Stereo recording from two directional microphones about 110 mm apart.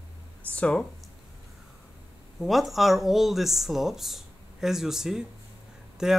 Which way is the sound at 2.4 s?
Centre (ahead or behind).